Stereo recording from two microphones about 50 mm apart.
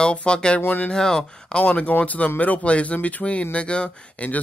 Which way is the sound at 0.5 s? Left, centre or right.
Left.